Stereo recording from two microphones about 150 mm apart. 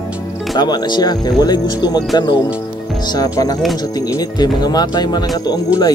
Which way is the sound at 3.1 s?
25° left (ahead or behind).